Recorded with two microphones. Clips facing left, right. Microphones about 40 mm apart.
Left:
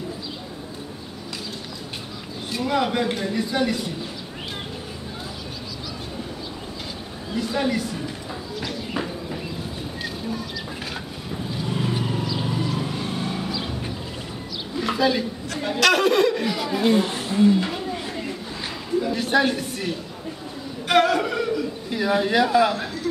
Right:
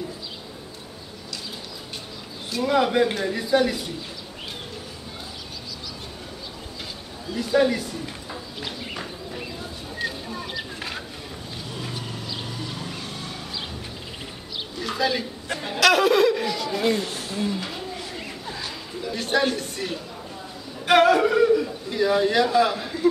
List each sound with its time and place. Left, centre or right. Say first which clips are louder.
2.5 s speech: right 2 dB; centre
7.3 s speech: right 3 dB; centre
11.6 s vehicle: left 9 dB; centre
14.8 s bird: left 4 dB; centre
15.6 s speech: even; centre
17.0 s speech: left 5 dB; left
17.4 s roaring cats: left 10 dB; centre
19.1 s speech: even; centre
20.8 s a sound: right 2 dB; centre
21.9 s speech: right 1 dB; centre